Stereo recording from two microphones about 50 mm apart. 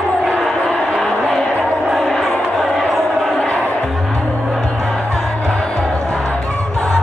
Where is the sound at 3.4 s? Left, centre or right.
Left.